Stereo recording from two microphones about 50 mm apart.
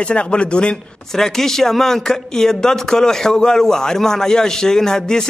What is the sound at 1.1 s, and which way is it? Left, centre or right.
A man's voice, centre.